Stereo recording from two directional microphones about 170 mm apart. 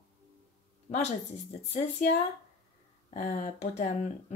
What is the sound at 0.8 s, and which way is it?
Speech, 40° left (ahead or behind).